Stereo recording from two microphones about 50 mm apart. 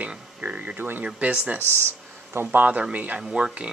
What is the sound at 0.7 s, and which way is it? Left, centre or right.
Speech, right.